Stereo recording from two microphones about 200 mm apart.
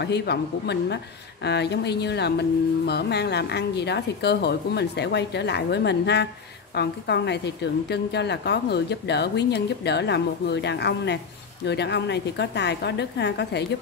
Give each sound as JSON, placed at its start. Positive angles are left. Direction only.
{"t": 0.0, "sound": "a woman's voice", "side_deg": 55}